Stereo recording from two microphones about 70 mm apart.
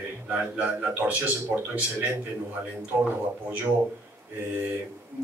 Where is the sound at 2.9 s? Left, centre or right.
Right.